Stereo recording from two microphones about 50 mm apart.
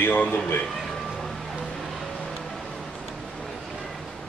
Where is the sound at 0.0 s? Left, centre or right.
Left.